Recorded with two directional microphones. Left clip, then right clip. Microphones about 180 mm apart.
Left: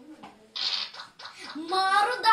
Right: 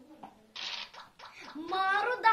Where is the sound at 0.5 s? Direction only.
Centre (ahead or behind).